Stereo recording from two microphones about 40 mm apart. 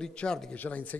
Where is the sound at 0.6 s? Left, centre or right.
Left.